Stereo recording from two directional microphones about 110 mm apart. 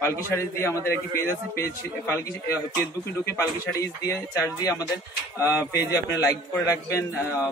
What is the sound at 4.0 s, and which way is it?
A man's voice, 35° left (ahead or behind).